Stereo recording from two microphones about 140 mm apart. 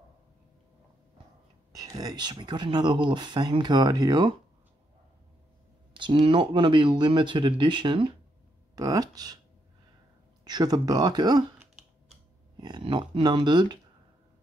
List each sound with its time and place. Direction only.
1.7 s speech: 25° right (ahead or behind)
5.9 s speech: 40° right (ahead or behind)
10.4 s speech: 30° right (ahead or behind)
12.5 s speech: 30° right (ahead or behind)